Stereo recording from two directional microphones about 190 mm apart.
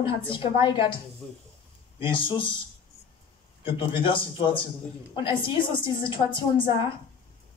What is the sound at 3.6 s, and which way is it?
Speech, 25° left (ahead or behind).